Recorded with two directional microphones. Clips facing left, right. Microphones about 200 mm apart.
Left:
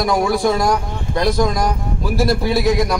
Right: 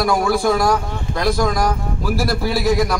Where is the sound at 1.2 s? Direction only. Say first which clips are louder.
Left 1 dB; 20° left (ahead or behind).